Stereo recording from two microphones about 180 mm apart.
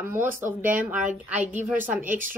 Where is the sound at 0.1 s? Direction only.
10° right (ahead or behind).